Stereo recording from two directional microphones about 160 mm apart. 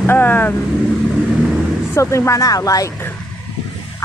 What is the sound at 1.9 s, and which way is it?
Speech, 15° left (ahead or behind).